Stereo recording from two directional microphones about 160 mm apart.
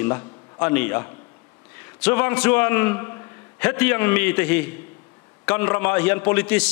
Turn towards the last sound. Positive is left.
turn(degrees=10)  # may be behind; listen again after turning